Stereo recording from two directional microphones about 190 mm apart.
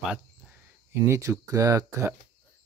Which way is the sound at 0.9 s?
15° right (ahead or behind).